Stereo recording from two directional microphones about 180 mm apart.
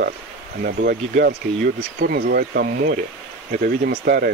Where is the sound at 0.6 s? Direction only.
60° right (ahead or behind).